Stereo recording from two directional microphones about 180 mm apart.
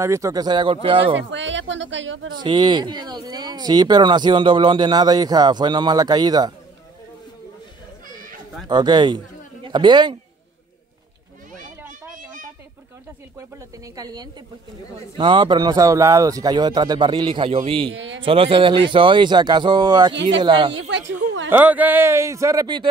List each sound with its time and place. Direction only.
0.0 s speech: 15° right (ahead or behind)
1.3 s speech: 90° right
2.4 s speech: 25° right (ahead or behind)
8.6 s a man's voice: 25° right (ahead or behind)
13.9 s speech: 20° right (ahead or behind)
17.9 s a man's voice: 90° right
18.2 s speech: 30° right (ahead or behind)
21.5 s speech: 10° right (ahead or behind)